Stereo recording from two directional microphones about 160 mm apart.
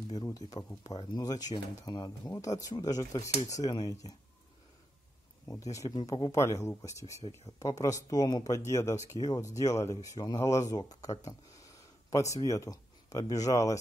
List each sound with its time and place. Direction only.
0.1 s speech: 25° left (ahead or behind)
5.5 s speech: 20° left (ahead or behind)
6.3 s a man's voice: 20° left (ahead or behind)